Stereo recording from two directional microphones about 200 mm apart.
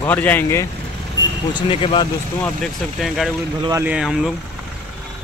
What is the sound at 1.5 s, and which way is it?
Speech, 25° left (ahead or behind).